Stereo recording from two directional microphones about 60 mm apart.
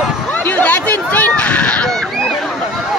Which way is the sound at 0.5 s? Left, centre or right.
Left.